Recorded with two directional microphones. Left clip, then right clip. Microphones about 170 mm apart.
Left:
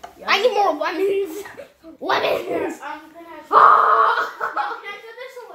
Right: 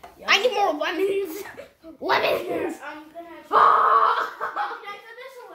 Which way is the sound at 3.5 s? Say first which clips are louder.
Left 4 dB; 15° left (ahead or behind).